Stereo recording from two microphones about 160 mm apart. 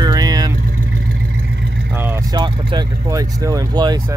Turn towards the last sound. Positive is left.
turn(degrees=-25)  # may be behind; listen again after turning